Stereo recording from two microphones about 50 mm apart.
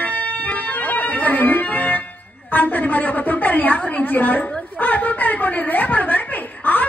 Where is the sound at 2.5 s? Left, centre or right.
Left.